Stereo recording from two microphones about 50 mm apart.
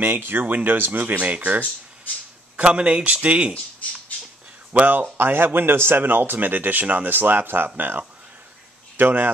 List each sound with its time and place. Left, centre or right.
0.0 s speech: right
4.7 s speech: right